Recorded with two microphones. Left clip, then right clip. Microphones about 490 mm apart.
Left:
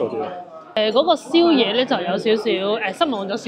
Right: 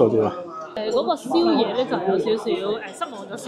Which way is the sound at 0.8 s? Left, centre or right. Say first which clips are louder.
Left 6 dB; left.